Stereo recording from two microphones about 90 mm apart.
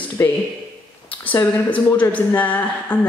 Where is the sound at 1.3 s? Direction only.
20° left (ahead or behind).